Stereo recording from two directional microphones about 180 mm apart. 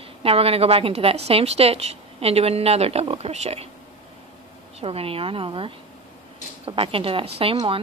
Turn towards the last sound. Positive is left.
turn(degrees=-30)  # may be behind; listen again after turning